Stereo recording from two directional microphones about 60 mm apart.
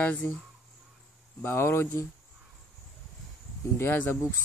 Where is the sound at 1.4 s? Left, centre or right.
Left.